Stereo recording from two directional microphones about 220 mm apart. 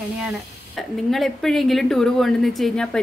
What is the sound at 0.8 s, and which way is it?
A woman's voice, centre (ahead or behind).